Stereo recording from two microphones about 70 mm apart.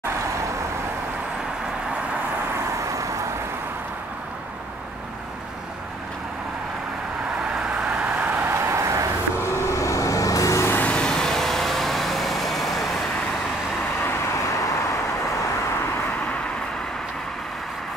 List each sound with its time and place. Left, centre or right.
2.8 s vehicle: right
8.0 s vehicle: right
8.5 s vehicle: right
9.7 s vehicle: left
10.8 s vehicle: centre